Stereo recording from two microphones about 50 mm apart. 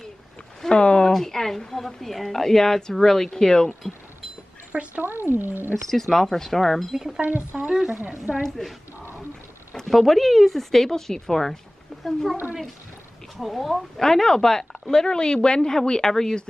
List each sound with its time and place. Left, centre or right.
0.6 s a woman's voice: centre
1.1 s a woman's voice: centre
5.0 s speech: right
5.9 s a woman's voice: centre
7.2 s speech: right
8.4 s a woman's voice: centre
9.8 s a woman's voice: centre
13.4 s a woman's voice: centre